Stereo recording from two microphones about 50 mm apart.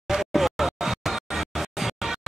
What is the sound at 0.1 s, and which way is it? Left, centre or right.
Music, centre.